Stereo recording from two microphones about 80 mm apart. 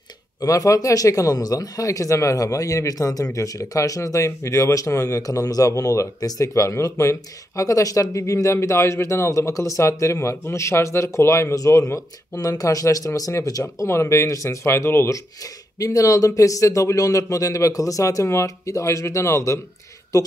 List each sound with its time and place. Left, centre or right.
0.4 s speech: left
13.8 s speech: left